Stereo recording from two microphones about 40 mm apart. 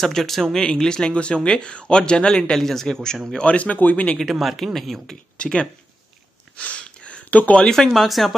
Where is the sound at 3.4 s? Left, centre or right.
Left.